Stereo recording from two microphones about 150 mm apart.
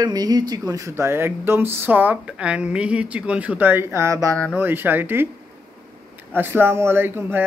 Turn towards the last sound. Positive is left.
turn(degrees=-15)  # may be behind; listen again after turning